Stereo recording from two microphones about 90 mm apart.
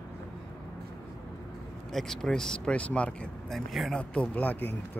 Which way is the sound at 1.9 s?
5° left (ahead or behind).